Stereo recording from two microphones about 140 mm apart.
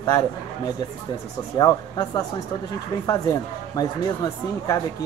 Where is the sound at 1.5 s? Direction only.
30° left (ahead or behind).